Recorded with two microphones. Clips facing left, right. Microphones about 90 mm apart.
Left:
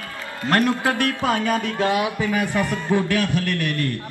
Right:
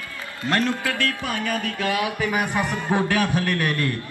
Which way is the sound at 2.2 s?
20° right (ahead or behind).